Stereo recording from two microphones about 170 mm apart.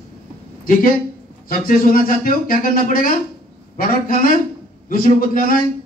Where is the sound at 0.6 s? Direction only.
55° left (ahead or behind).